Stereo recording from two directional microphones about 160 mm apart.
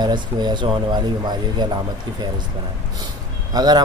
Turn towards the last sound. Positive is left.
turn(degrees=-25)  # may be behind; listen again after turning